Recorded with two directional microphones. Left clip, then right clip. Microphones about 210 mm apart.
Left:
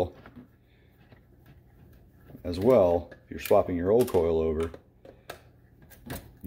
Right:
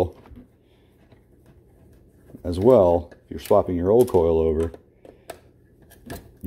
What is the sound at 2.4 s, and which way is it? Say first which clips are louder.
Speech: right 6 dB; 30° right (ahead or behind).